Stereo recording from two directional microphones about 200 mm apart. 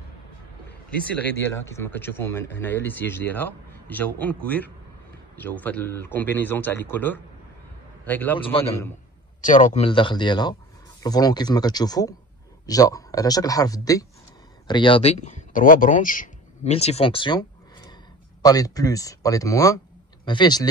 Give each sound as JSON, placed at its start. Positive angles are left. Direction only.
{"t": 0.8, "sound": "a man's voice", "side_deg": 10}
{"t": 9.4, "sound": "speech", "side_deg": 40}
{"t": 9.8, "sound": "speech", "side_deg": 25}
{"t": 16.7, "sound": "speech", "side_deg": 30}